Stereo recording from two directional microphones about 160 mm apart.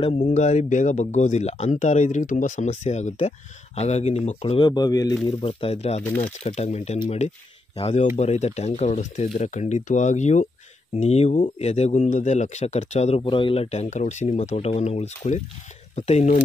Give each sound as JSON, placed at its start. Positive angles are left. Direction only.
{"t": 0.0, "sound": "speech", "side_deg": 45}
{"t": 5.4, "sound": "speech", "side_deg": 35}
{"t": 6.0, "sound": "speech", "side_deg": 10}
{"t": 6.4, "sound": "speech", "side_deg": 45}
{"t": 13.2, "sound": "speech", "side_deg": 30}